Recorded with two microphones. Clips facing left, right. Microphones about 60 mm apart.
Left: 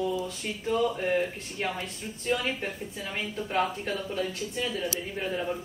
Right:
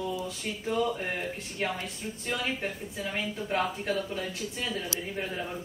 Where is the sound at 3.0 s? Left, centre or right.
Centre.